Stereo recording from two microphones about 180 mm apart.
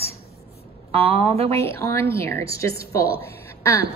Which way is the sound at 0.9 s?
30° right (ahead or behind).